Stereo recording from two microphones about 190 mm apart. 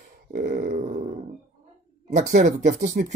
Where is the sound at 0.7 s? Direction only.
35° right (ahead or behind).